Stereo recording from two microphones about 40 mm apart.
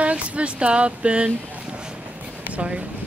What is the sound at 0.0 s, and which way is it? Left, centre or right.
Speech, right.